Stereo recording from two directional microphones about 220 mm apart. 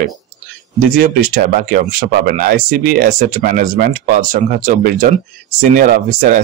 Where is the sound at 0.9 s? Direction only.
40° right (ahead or behind).